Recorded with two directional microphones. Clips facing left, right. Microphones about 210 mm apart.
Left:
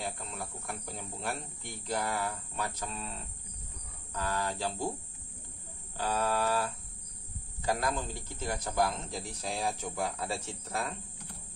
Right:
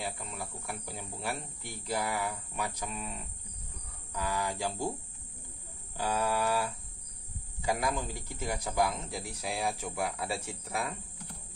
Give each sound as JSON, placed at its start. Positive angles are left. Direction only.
{"t": 0.0, "sound": "speech", "side_deg": -10}
{"t": 5.9, "sound": "speech", "side_deg": -10}